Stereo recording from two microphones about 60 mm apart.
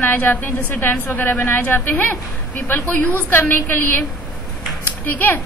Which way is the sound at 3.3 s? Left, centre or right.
Left.